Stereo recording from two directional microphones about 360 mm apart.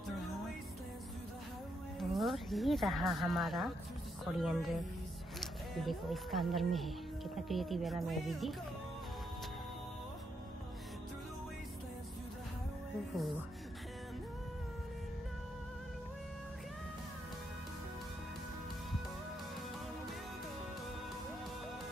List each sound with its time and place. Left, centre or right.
2.0 s speech: centre